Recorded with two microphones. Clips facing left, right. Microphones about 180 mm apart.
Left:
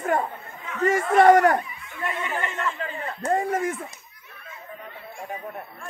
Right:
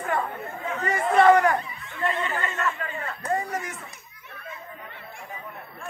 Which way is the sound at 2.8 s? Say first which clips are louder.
Left 2 dB; 25° left (ahead or behind).